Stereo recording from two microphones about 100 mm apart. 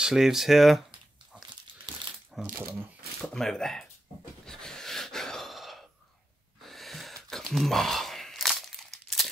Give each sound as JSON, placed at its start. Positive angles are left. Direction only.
{"t": 0.0, "sound": "speech", "side_deg": -5}
{"t": 1.3, "sound": "crumpling", "side_deg": -10}
{"t": 2.5, "sound": "speech", "side_deg": -25}
{"t": 3.2, "sound": "speech", "side_deg": 5}
{"t": 4.5, "sound": "gasp", "side_deg": 5}
{"t": 7.2, "sound": "crumpling", "side_deg": 0}